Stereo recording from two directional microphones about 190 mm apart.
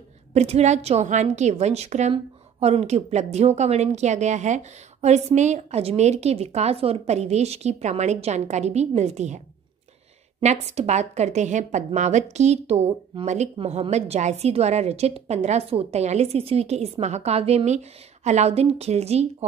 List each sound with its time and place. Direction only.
0.3 s a woman's voice: 35° right (ahead or behind)
10.4 s a woman's voice: 35° right (ahead or behind)